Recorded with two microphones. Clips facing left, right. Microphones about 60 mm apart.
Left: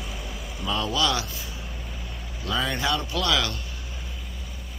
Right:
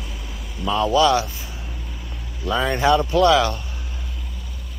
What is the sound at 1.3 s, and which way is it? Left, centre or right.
Vehicle, right.